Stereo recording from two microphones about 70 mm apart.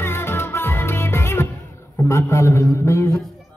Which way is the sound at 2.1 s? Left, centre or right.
Left.